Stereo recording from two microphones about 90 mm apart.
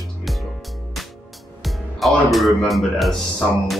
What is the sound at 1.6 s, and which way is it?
Speech, centre (ahead or behind).